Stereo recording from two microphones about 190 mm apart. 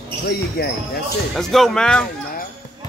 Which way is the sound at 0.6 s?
55° left (ahead or behind).